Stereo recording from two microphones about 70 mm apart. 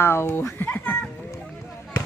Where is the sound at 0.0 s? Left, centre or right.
Left.